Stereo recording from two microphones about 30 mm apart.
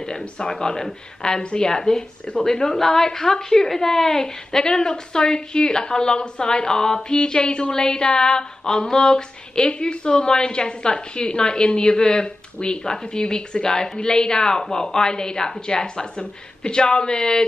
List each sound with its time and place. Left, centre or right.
0.0 s a woman's voice: left
7.7 s a woman's voice: left